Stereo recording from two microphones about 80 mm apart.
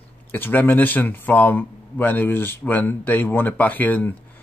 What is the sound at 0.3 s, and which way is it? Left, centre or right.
Speech, left.